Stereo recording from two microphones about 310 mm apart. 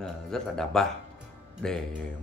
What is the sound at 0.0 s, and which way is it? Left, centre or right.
Speech, centre.